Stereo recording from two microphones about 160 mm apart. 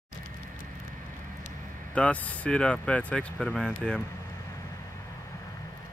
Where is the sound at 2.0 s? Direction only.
10° left (ahead or behind).